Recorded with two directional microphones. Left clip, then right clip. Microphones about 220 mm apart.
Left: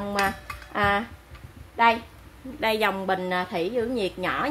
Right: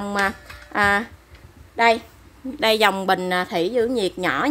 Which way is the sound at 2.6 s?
50° right (ahead or behind).